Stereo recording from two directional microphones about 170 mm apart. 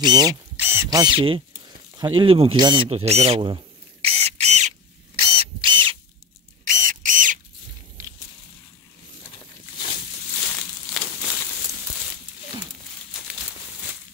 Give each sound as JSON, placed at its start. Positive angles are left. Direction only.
{"t": 0.0, "sound": "speech", "side_deg": -25}
{"t": 0.6, "sound": "speech", "side_deg": -15}
{"t": 2.0, "sound": "a sound", "side_deg": -30}
{"t": 5.2, "sound": "a sound", "side_deg": -30}
{"t": 6.6, "sound": "camera", "side_deg": -50}
{"t": 10.4, "sound": "crushing", "side_deg": 10}